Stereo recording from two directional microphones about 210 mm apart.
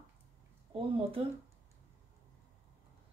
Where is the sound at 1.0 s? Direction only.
25° right (ahead or behind).